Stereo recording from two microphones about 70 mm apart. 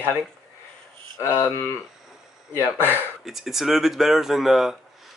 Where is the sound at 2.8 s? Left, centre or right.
Right.